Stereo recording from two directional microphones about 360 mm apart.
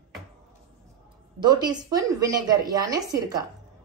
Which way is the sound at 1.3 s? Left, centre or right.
Centre.